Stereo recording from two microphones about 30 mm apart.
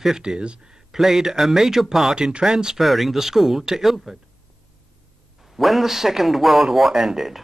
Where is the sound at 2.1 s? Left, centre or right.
Right.